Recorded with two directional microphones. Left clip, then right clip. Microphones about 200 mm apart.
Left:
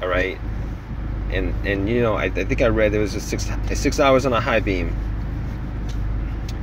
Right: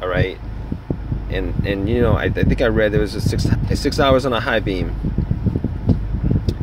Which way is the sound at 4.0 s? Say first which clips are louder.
Right 1 dB; 15° right (ahead or behind).